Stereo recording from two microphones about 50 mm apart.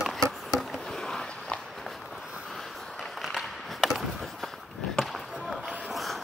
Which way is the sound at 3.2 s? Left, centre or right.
Centre.